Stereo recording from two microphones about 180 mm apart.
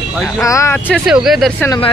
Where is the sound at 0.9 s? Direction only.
Centre (ahead or behind).